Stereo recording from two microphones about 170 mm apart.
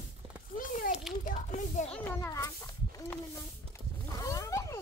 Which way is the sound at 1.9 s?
10° left (ahead or behind).